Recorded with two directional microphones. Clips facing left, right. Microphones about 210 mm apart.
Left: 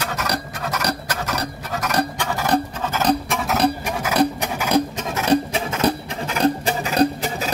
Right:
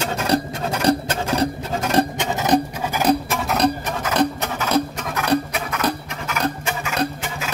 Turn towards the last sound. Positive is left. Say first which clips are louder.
# left 5 dB
turn(degrees=35)  # may be behind; listen again after turning